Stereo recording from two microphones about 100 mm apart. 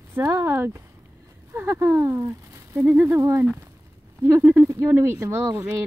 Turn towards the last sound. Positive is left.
turn(degrees=-20)  # may be behind; listen again after turning